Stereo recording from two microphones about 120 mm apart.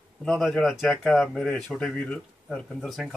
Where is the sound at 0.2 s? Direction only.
Centre (ahead or behind).